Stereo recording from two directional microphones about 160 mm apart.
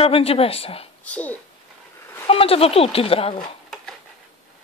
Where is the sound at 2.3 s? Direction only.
35° left (ahead or behind).